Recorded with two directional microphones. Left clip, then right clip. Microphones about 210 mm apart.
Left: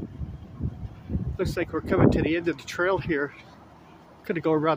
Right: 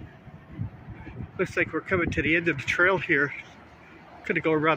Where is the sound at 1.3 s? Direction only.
15° left (ahead or behind).